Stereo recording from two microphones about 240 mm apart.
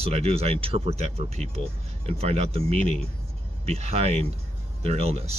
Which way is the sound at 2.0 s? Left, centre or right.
Right.